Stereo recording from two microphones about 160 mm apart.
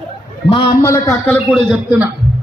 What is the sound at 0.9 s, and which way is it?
Speech, 15° left (ahead or behind).